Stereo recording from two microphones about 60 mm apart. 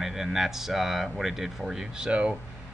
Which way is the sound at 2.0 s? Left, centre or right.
Centre.